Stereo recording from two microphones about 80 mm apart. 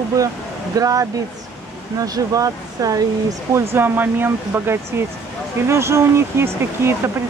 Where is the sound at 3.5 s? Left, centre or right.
Right.